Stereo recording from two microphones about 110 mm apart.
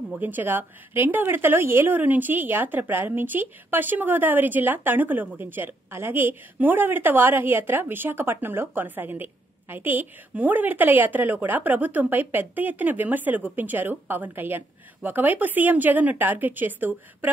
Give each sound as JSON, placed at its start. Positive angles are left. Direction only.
{"t": 0.2, "sound": "a woman's voice", "side_deg": -15}